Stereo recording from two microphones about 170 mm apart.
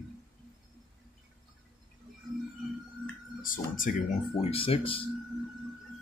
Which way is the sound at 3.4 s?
50° left (ahead or behind).